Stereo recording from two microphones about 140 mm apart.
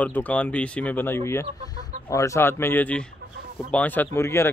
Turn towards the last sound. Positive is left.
turn(degrees=20)  # may be behind; listen again after turning